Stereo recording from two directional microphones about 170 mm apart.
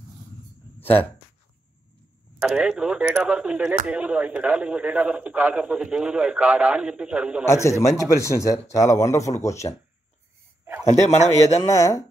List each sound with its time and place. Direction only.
0.7 s a sound: 10° left (ahead or behind)
2.4 s speech: 5° right (ahead or behind)
7.4 s speech: 15° left (ahead or behind)
10.9 s a man's voice: 40° left (ahead or behind)
11.6 s speech: 20° left (ahead or behind)